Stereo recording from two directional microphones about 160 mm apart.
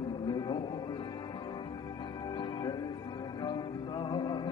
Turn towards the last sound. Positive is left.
turn(degrees=30)  # may be behind; listen again after turning